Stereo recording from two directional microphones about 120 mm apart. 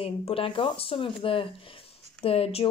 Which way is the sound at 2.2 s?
55° left (ahead or behind).